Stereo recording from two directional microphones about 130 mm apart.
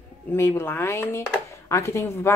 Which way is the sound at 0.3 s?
20° left (ahead or behind).